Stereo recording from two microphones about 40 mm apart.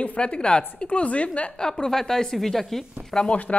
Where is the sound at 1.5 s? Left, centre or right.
Centre.